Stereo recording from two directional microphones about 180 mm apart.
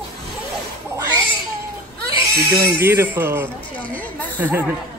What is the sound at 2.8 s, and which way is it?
Speech, 15° right (ahead or behind).